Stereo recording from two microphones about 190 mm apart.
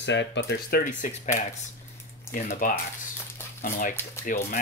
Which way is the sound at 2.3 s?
45° left (ahead or behind).